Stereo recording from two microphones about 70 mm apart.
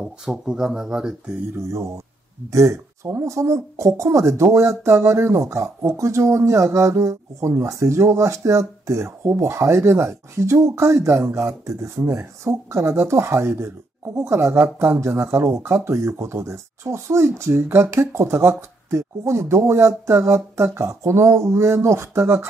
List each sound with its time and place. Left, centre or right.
0.0 s speech: centre
1.5 s speech: right